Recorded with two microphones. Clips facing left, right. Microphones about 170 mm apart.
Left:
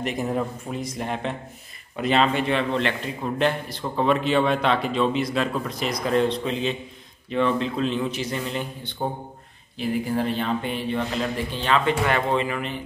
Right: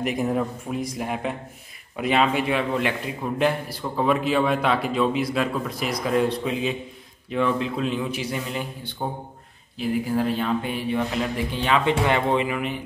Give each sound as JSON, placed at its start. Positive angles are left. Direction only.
{"t": 0.0, "sound": "a man's voice", "side_deg": -5}